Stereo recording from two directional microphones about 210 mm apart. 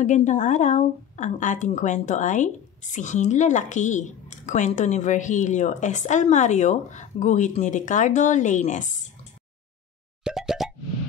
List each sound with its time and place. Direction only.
0.0 s a woman's voice: 35° left (ahead or behind)
10.2 s plop: centre (ahead or behind)